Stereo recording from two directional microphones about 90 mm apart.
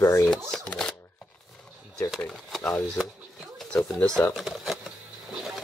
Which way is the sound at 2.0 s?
5° left (ahead or behind).